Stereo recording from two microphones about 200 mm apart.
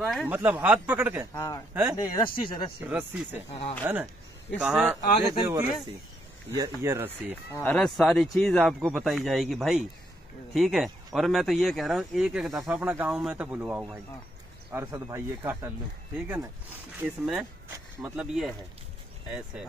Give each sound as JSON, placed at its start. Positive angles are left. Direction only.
{"t": 0.0, "sound": "speech", "side_deg": 0}
{"t": 1.3, "sound": "speech", "side_deg": 15}
{"t": 1.7, "sound": "speech", "side_deg": -10}
{"t": 2.0, "sound": "speech", "side_deg": 15}
{"t": 2.8, "sound": "speech", "side_deg": -10}
{"t": 5.5, "sound": "speech", "side_deg": -15}
{"t": 6.8, "sound": "speech", "side_deg": -10}
{"t": 7.5, "sound": "speech", "side_deg": 5}
{"t": 17.0, "sound": "speech", "side_deg": -5}